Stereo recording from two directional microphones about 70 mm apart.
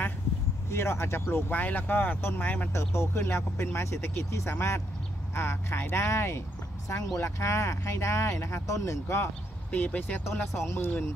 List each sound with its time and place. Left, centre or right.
0.7 s speech: left; by 2.7 s centre
2.7 s speech: left
9.7 s speech: left
10.2 s speech: left